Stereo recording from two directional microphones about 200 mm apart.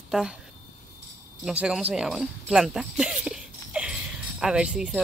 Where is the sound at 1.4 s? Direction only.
5° right (ahead or behind).